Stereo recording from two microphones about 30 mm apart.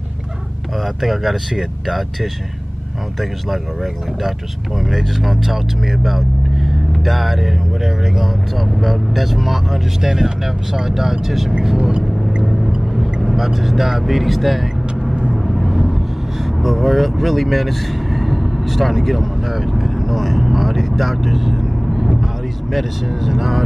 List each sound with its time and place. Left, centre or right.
1.0 s speech: centre
4.8 s speech: centre
10.0 s speech: centre
11.7 s a sound: right
12.4 s vehicle: centre
13.6 s speech: centre
15.4 s vehicle: centre
16.6 s speech: centre